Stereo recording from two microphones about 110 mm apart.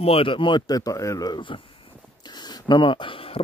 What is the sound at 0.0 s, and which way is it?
Speech, 60° left (ahead or behind).